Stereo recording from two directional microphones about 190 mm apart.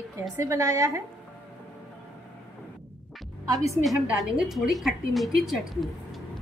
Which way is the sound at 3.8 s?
Centre (ahead or behind).